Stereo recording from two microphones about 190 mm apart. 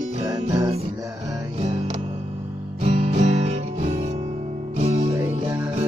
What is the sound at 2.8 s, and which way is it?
Music, 35° right (ahead or behind).